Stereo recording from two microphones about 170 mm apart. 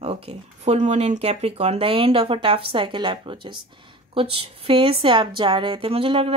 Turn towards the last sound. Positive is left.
turn(degrees=-30)  # may be behind; listen again after turning